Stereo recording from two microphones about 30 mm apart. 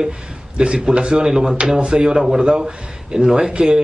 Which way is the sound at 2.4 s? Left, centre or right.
Right.